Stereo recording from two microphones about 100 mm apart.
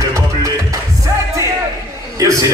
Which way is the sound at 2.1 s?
35° right (ahead or behind).